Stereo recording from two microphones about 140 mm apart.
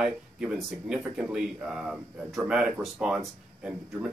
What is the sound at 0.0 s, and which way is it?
Speech, 5° right (ahead or behind).